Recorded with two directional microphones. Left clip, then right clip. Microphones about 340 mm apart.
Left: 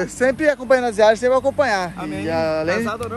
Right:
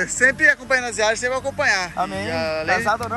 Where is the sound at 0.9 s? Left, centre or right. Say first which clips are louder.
Left 6 dB; left.